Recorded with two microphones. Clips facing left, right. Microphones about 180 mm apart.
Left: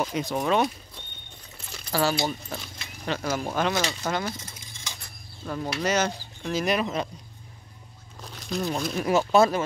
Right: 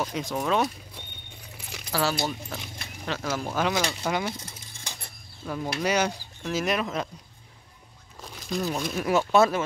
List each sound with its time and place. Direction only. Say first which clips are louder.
0.0 s speech: left 2 dB; centre (ahead or behind)
1.7 s speech: left 2 dB; 5° right (ahead or behind)
5.4 s speech: even; 5° right (ahead or behind)
8.2 s speech: even; centre (ahead or behind)